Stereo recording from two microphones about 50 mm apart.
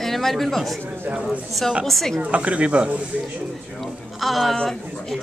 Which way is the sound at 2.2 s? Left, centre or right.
Right.